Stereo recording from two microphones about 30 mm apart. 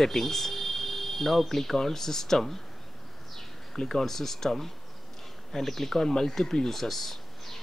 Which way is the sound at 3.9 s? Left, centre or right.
Centre.